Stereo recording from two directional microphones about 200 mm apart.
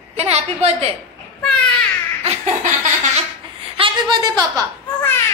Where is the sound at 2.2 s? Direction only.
35° right (ahead or behind).